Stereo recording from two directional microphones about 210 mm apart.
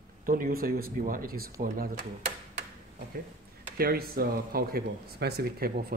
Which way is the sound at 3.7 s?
45° right (ahead or behind).